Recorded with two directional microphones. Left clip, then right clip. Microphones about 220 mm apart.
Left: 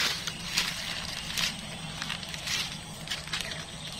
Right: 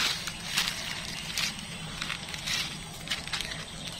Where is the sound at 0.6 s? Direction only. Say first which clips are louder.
Right 1 dB; 25° right (ahead or behind).